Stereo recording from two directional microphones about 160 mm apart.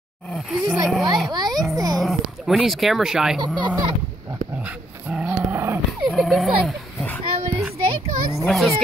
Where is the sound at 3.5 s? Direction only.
30° right (ahead or behind).